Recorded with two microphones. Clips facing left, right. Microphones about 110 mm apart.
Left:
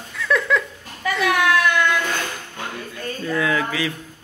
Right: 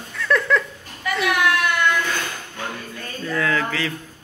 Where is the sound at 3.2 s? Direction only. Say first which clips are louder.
Even; 15° left (ahead or behind).